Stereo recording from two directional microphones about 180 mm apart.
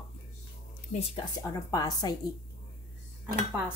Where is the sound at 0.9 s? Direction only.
35° left (ahead or behind).